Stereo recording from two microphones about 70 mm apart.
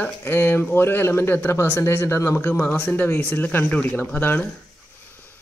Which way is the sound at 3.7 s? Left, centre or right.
Centre.